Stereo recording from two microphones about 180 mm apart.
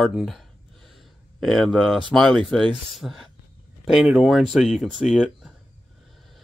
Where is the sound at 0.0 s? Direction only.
Centre (ahead or behind).